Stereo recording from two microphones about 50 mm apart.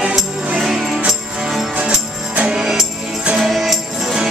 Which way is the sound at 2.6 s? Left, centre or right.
Centre.